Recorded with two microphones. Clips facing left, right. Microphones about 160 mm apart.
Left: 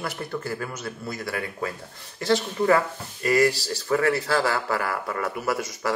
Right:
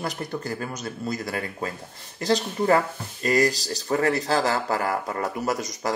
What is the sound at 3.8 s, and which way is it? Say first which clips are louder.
Speech: left 1 dB; 40° right (ahead or behind).